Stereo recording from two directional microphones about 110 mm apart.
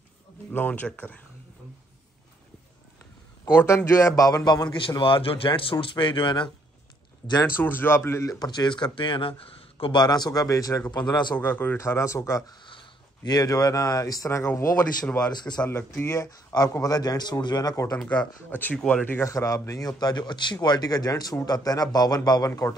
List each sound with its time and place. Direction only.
0.5 s speech: 15° left (ahead or behind)
3.7 s a man's voice: 30° left (ahead or behind); by 6.5 s 50° left (ahead or behind)
7.5 s speech: 20° left (ahead or behind); by 10.0 s 50° left (ahead or behind)
10.0 s speech: 35° left (ahead or behind)
10.9 s a man's voice: 45° left (ahead or behind)
11.3 s speech: 20° left (ahead or behind)
12.6 s speech: 45° left (ahead or behind); by 14.7 s 25° left (ahead or behind)
15.0 s speech: 10° left (ahead or behind)
15.9 s speech: 25° left (ahead or behind)
18.0 s speech: 10° left (ahead or behind)
19.3 s speech: 30° left (ahead or behind)